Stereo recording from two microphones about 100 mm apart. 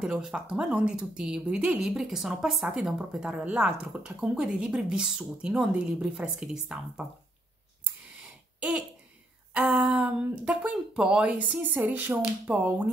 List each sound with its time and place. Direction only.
0.0 s speech: 5° right (ahead or behind)
8.5 s a sound: 10° right (ahead or behind)
9.5 s speech: 10° right (ahead or behind)